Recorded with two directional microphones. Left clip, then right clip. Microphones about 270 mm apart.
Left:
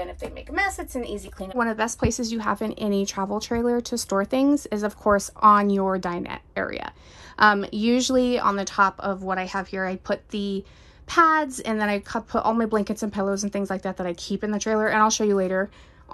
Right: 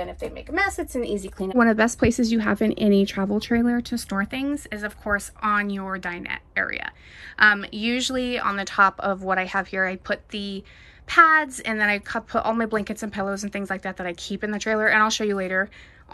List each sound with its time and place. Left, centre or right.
0.0 s a woman's voice: centre
1.6 s a woman's voice: centre